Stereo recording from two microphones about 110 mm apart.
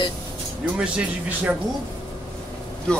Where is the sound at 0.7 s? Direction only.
10° right (ahead or behind).